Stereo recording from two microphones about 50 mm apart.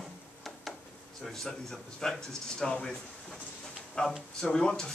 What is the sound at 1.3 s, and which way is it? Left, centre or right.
Speech, centre.